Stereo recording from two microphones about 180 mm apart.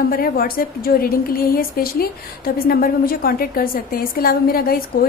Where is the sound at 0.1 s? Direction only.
55° left (ahead or behind).